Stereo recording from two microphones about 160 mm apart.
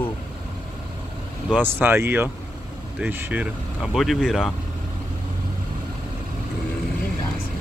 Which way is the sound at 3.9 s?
Centre (ahead or behind).